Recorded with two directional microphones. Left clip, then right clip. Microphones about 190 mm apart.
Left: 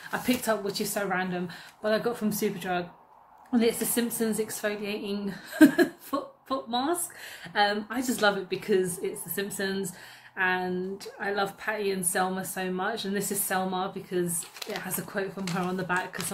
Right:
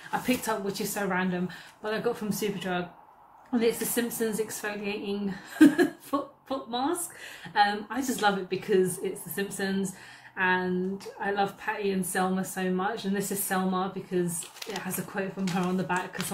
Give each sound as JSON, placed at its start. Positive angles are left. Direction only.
{"t": 0.1, "sound": "speech", "side_deg": 25}